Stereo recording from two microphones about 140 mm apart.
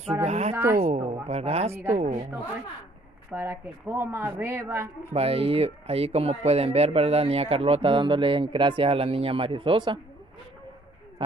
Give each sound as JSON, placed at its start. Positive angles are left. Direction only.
{"t": 0.2, "sound": "speech", "side_deg": -50}
{"t": 1.0, "sound": "a woman's voice", "side_deg": -20}
{"t": 1.3, "sound": "a woman's voice", "side_deg": -50}
{"t": 3.3, "sound": "speech", "side_deg": -15}
{"t": 5.1, "sound": "speech", "side_deg": -45}